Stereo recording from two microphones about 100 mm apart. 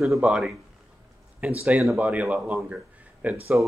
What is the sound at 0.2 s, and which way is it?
Speech, 5° right (ahead or behind).